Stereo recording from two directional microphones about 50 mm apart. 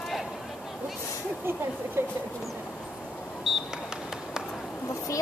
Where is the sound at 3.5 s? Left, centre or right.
Centre.